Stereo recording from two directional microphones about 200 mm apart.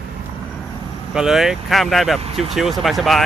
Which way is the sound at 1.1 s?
Centre (ahead or behind).